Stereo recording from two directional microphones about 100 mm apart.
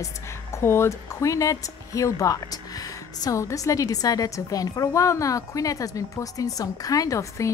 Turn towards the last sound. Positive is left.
turn(degrees=35)  # may be behind; listen again after turning